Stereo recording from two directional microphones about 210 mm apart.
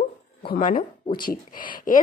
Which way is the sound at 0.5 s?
40° left (ahead or behind).